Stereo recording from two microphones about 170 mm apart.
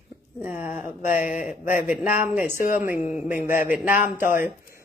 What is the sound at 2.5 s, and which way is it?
Speech, 55° left (ahead or behind).